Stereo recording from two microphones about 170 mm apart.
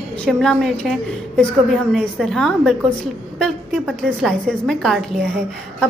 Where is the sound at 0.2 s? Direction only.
5° left (ahead or behind).